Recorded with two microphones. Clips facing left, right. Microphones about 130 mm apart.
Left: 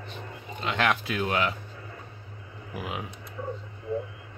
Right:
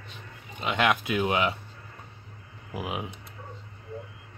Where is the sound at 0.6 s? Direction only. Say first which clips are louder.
Right 1 dB; 10° right (ahead or behind).